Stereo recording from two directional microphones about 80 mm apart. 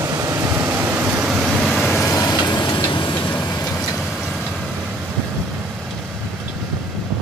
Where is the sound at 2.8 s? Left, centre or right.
Left.